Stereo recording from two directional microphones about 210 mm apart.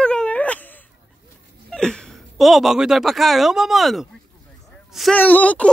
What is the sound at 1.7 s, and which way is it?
A woman's voice, 5° left (ahead or behind).